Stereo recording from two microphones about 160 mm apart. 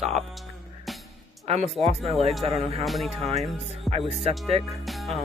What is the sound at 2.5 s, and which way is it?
Music, 40° right (ahead or behind).